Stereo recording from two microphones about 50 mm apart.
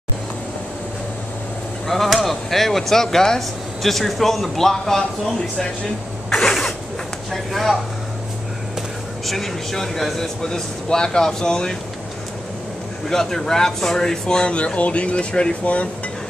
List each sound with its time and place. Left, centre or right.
1.9 s speech: centre
6.3 s a sound: centre
7.5 s speech: centre
9.2 s speech: centre
13.1 s speech: centre; by 15.9 s left